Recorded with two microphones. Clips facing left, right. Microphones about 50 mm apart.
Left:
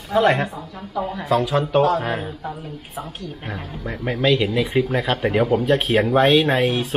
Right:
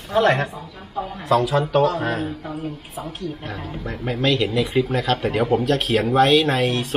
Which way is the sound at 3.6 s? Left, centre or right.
Centre.